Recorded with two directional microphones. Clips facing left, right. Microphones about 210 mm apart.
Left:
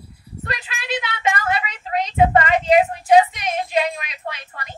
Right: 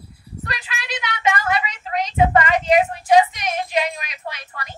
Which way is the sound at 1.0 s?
30° left (ahead or behind).